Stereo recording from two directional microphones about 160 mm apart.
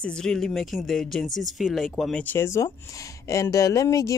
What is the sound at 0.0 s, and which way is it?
Speech, 5° left (ahead or behind).